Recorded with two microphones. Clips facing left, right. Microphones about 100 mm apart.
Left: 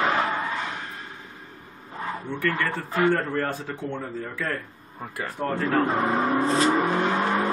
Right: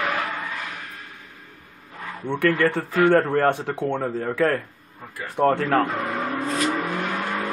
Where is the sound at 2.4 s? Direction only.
70° right (ahead or behind).